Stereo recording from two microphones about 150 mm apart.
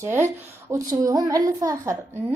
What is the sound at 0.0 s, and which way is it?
A woman's voice, 20° right (ahead or behind).